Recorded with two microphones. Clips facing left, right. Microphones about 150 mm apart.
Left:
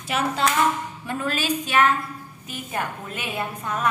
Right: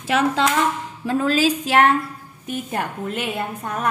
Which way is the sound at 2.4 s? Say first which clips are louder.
Right 4 dB; 55° right (ahead or behind).